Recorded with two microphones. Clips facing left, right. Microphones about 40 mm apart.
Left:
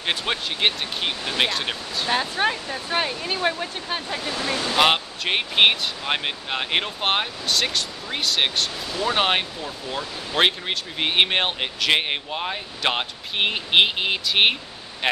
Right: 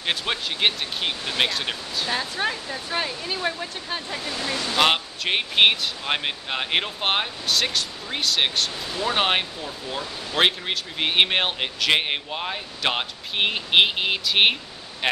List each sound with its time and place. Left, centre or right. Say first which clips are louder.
0.0 s speech: left 1 dB; centre
2.0 s speech: left 4 dB; left
4.7 s speech: left 1 dB; centre